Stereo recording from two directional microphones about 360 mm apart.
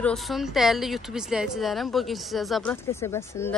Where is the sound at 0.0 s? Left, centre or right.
Centre.